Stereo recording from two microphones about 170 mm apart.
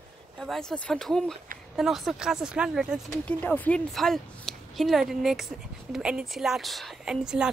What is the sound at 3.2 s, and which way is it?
Speech, 10° left (ahead or behind).